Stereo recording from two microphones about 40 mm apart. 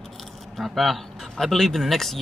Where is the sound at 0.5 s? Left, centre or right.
Centre.